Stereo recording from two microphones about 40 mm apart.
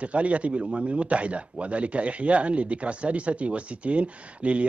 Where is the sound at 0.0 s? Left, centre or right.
Right.